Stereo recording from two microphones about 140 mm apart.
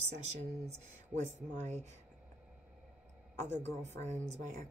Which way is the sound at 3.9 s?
55° right (ahead or behind).